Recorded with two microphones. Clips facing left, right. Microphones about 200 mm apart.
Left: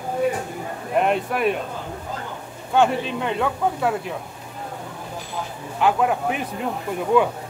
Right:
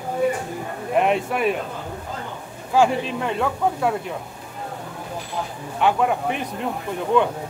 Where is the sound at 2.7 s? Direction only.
Centre (ahead or behind).